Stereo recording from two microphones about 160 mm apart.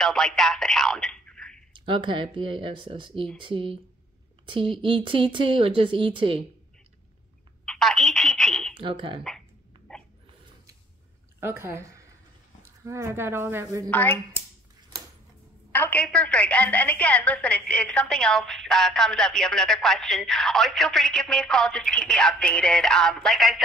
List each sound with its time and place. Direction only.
0.0 s speech: centre (ahead or behind)
1.7 s speech: 30° right (ahead or behind)
7.6 s telephone: centre (ahead or behind)
8.7 s speech: 30° right (ahead or behind)
9.9 s a sound: 5° left (ahead or behind)
11.3 s a woman's voice: 15° right (ahead or behind)
13.8 s speech: 10° left (ahead or behind)
15.7 s a woman's voice: 10° left (ahead or behind)